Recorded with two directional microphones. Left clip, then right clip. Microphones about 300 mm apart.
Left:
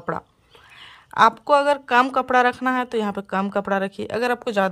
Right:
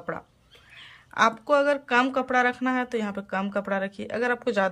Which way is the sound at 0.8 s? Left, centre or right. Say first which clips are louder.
Left 6 dB; centre.